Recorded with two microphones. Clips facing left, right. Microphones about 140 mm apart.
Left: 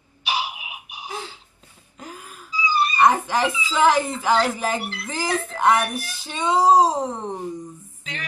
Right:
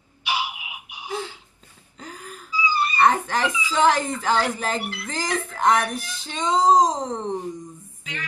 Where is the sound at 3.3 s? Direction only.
10° left (ahead or behind).